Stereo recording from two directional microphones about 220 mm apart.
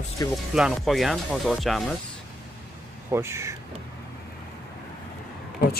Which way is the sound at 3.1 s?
10° right (ahead or behind).